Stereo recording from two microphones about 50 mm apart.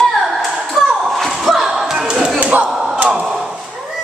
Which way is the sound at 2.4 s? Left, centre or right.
Right.